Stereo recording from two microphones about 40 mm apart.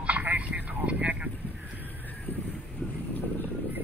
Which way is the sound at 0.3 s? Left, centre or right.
Right.